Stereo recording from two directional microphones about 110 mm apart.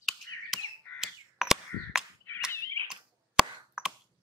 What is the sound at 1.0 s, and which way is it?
Fire alarm, centre (ahead or behind).